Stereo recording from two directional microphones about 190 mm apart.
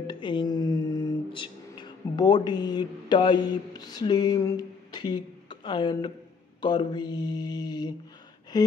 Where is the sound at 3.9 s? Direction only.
20° left (ahead or behind).